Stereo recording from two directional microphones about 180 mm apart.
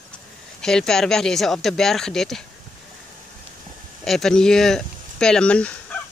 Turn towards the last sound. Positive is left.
turn(degrees=5)  # may be behind; listen again after turning